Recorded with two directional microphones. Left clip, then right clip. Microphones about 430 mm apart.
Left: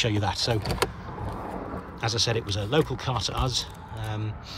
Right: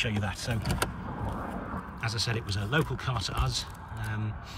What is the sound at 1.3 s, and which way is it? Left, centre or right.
Vehicle, centre.